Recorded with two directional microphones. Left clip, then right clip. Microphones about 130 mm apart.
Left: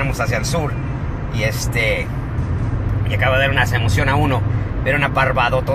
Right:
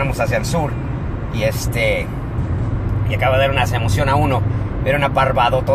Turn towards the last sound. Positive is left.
turn(degrees=-15)  # may be behind; listen again after turning